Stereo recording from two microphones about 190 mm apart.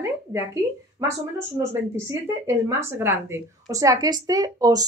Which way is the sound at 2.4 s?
10° right (ahead or behind).